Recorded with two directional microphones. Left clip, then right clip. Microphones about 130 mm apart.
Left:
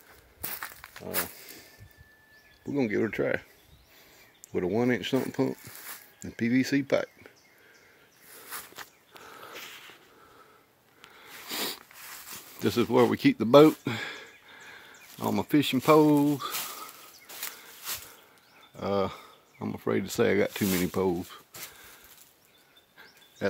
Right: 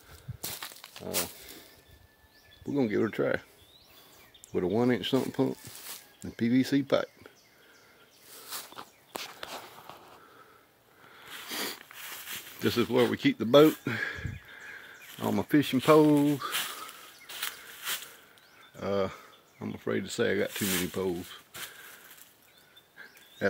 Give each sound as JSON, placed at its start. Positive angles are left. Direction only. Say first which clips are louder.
{"t": 0.4, "sound": "walk", "louder": "left 1 dB", "side_deg": 0}
{"t": 0.8, "sound": "a sound", "louder": "right 1 dB", "side_deg": 10}
{"t": 2.6, "sound": "speech", "louder": "even", "side_deg": 15}
{"t": 4.6, "sound": "speech", "louder": "even", "side_deg": 10}
{"t": 11.1, "sound": "biting", "louder": "left 1 dB", "side_deg": 15}
{"t": 12.5, "sound": "speech", "louder": "left 2 dB", "side_deg": 25}
{"t": 13.1, "sound": "speech", "louder": "left 3 dB", "side_deg": 55}
{"t": 13.8, "sound": "a sound", "louder": "right 1 dB", "side_deg": 20}
{"t": 16.1, "sound": "speech", "louder": "left 1 dB", "side_deg": 15}
{"t": 18.8, "sound": "a sound", "louder": "left 2 dB", "side_deg": 30}
{"t": 19.7, "sound": "speech", "louder": "left 3 dB", "side_deg": 50}
{"t": 20.0, "sound": "speech", "louder": "left 4 dB", "side_deg": 90}